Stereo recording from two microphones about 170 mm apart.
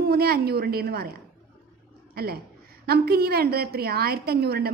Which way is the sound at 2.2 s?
65° right (ahead or behind).